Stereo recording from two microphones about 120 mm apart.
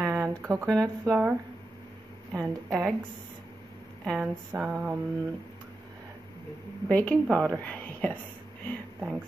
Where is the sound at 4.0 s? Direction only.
5° left (ahead or behind).